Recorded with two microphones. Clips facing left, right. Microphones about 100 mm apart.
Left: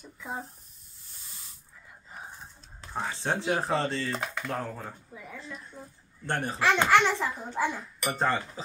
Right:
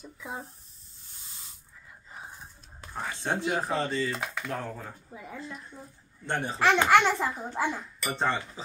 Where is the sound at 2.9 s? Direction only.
20° left (ahead or behind).